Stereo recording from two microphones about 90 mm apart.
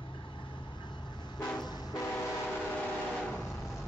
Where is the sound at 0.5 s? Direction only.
60° left (ahead or behind).